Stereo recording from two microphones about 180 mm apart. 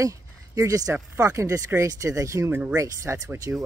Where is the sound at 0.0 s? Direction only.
20° right (ahead or behind).